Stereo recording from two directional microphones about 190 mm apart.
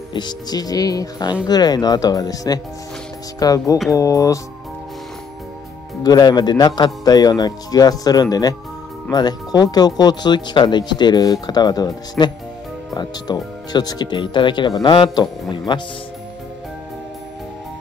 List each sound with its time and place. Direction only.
0.1 s speech: 20° left (ahead or behind)
3.3 s music: 20° left (ahead or behind)
6.0 s speech: 20° left (ahead or behind)